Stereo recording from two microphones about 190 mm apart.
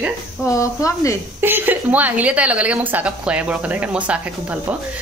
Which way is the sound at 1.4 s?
10° right (ahead or behind).